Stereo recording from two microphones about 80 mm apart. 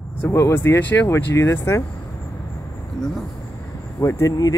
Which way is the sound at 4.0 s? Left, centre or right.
Left.